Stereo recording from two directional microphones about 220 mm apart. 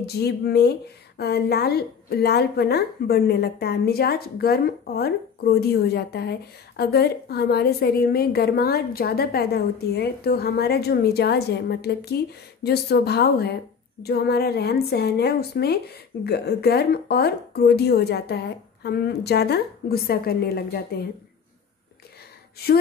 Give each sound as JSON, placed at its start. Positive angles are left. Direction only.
{"t": 0.0, "sound": "a woman's voice", "side_deg": 45}
{"t": 22.6, "sound": "a woman's voice", "side_deg": 45}